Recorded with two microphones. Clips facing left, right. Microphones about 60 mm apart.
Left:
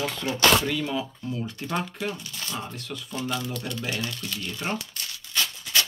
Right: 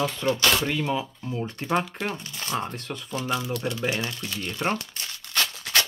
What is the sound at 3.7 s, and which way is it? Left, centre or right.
Speech, centre.